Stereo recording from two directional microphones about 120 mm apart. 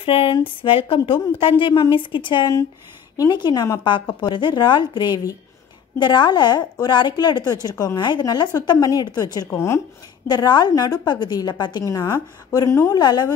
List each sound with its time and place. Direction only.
0.0 s a woman's voice: 45° left (ahead or behind)
1.7 s a woman's voice: 40° left (ahead or behind); by 9.8 s 25° left (ahead or behind)
10.2 s a woman's voice: 35° left (ahead or behind)
12.9 s a woman's voice: 35° left (ahead or behind)